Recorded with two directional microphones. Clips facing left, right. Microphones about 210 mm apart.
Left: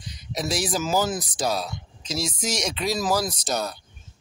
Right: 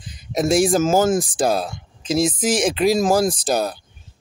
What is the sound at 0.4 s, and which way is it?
Speech, 50° right (ahead or behind).